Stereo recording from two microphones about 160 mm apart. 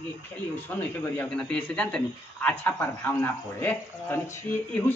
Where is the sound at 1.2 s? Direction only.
5° left (ahead or behind).